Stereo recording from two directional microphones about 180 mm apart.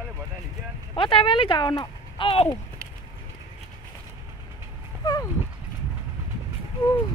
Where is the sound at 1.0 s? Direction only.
30° left (ahead or behind).